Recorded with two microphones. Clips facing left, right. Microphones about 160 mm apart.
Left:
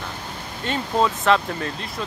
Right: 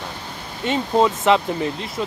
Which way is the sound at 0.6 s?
20° right (ahead or behind).